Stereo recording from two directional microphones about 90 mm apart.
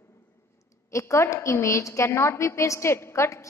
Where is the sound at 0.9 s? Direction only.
30° left (ahead or behind).